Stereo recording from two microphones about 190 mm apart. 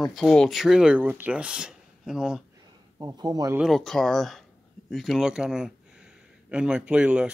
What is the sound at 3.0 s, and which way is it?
Speech, 20° right (ahead or behind).